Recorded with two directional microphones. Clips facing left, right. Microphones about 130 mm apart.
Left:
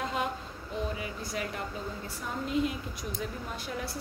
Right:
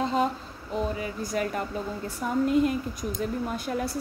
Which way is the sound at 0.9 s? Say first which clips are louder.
Right 6 dB; 40° right (ahead or behind).